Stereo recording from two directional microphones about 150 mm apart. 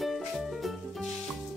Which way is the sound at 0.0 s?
Centre (ahead or behind).